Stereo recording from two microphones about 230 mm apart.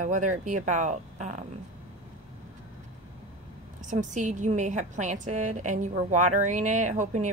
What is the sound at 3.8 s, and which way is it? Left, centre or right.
A woman's voice, right.